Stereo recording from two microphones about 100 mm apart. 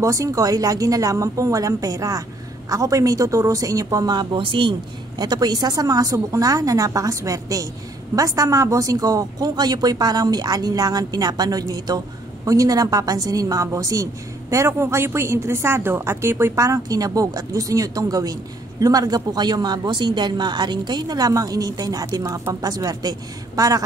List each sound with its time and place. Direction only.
0.0 s a woman's voice: 30° right (ahead or behind)
4.4 s a woman's voice: 55° right (ahead or behind); by 23.8 s 35° right (ahead or behind)